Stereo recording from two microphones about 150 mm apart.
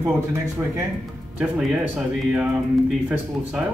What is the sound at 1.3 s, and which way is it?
A man's voice, 10° right (ahead or behind).